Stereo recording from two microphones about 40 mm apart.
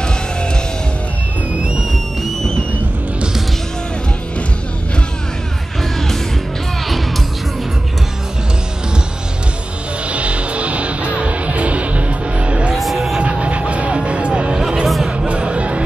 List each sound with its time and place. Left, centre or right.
10.0 s music: right
12.7 s music: centre
13.2 s vehicle: right
14.6 s music: centre
15.0 s music: right